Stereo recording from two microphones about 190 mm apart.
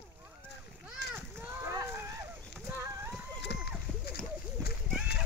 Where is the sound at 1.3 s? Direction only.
15° right (ahead or behind).